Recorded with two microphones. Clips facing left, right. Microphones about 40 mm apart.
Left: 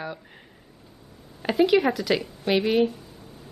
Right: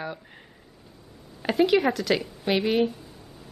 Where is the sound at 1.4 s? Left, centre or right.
Centre.